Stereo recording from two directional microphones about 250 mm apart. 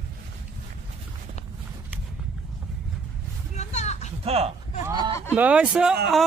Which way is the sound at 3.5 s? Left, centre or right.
Left.